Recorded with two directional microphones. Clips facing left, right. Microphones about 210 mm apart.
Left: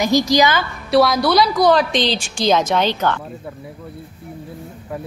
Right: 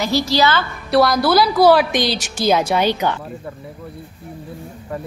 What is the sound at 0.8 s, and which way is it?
A woman's voice, centre (ahead or behind).